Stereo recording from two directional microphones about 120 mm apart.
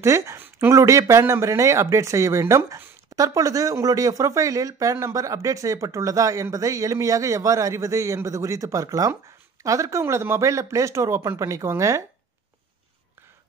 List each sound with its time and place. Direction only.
0.0 s speech: 25° right (ahead or behind)